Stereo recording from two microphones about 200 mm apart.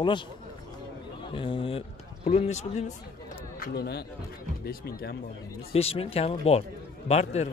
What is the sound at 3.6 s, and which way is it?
Speech, 55° left (ahead or behind).